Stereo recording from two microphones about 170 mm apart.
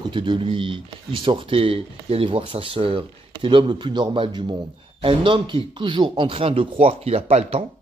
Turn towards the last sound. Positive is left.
turn(degrees=-35)  # may be behind; listen again after turning